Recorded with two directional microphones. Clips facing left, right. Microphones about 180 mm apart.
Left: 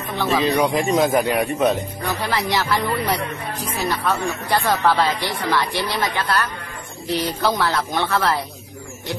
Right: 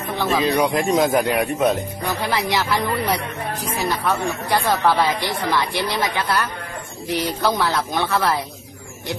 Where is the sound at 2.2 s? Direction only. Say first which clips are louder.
Even; 15° right (ahead or behind).